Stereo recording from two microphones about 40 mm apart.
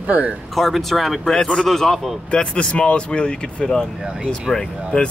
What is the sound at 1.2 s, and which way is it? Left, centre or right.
Speech, centre.